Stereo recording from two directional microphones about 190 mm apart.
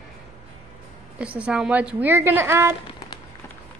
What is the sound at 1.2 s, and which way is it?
A woman's voice, 5° right (ahead or behind).